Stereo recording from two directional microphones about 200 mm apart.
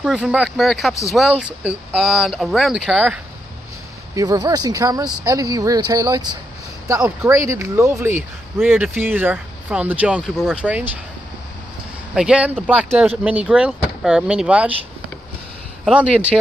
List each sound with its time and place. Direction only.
0.0 s speech: 5° right (ahead or behind)
4.1 s speech: 20° right (ahead or behind)
12.1 s speech: 5° right (ahead or behind)
15.8 s speech: 5° right (ahead or behind)